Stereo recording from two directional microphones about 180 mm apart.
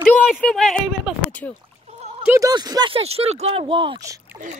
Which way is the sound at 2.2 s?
20° right (ahead or behind).